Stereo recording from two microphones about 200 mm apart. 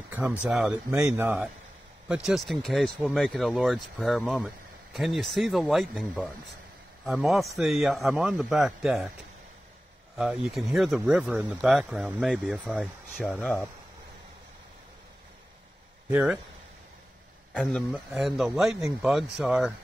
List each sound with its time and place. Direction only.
0.1 s speech: 5° right (ahead or behind)
10.1 s speech: 5° right (ahead or behind)
13.2 s speech: 5° left (ahead or behind)
16.1 s speech: 5° right (ahead or behind)
17.6 s speech: centre (ahead or behind)